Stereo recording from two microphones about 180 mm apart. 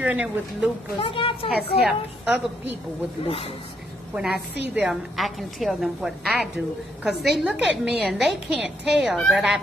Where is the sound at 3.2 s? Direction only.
30° left (ahead or behind).